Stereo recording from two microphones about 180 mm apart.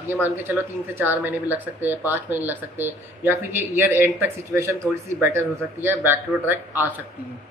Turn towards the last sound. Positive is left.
turn(degrees=-10)  # may be behind; listen again after turning